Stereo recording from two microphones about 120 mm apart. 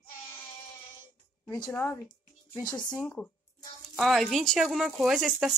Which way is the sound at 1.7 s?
15° left (ahead or behind).